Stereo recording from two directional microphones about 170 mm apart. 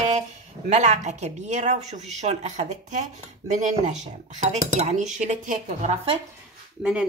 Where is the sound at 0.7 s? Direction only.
45° right (ahead or behind).